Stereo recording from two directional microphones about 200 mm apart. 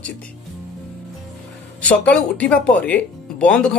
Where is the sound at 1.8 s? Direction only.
5° left (ahead or behind).